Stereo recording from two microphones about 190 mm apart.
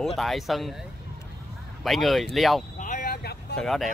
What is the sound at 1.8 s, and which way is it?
Speech, centre (ahead or behind).